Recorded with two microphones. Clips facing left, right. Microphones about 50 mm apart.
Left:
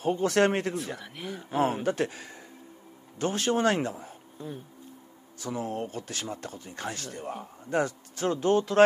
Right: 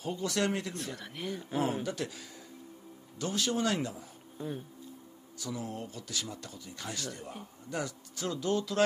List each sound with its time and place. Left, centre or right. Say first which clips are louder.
0.0 s speech: left 8 dB; left
0.9 s speech: even; centre
1.6 s speech: left 7 dB; left
5.4 s speech: left 6 dB; left